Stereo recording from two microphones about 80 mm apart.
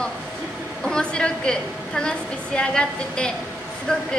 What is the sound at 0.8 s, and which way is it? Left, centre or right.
A woman's voice, centre.